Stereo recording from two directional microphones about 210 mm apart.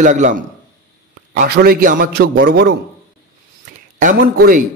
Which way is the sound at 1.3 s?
45° right (ahead or behind).